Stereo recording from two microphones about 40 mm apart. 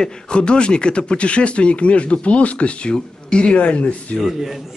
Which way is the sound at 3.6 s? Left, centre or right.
Left.